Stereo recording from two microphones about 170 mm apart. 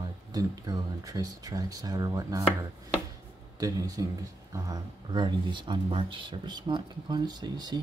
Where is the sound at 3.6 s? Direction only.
20° right (ahead or behind).